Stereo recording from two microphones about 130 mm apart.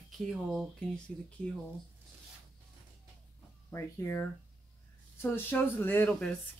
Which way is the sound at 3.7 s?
20° left (ahead or behind).